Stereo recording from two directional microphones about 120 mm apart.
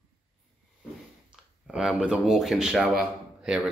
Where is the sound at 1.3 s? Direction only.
5° right (ahead or behind).